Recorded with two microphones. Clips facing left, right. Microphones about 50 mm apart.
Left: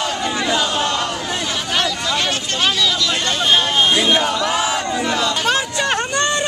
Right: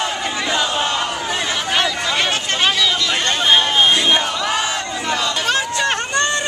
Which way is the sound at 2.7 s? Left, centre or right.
Centre.